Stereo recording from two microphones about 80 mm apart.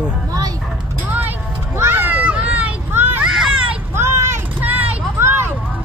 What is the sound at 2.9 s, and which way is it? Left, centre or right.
Children playing, right.